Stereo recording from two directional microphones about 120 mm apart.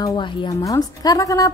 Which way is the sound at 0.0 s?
40° left (ahead or behind).